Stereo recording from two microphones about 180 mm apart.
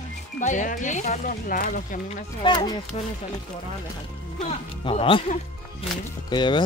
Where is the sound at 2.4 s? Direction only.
25° left (ahead or behind).